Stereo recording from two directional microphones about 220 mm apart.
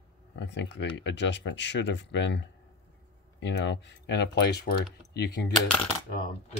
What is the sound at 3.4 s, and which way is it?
Speech, 55° left (ahead or behind).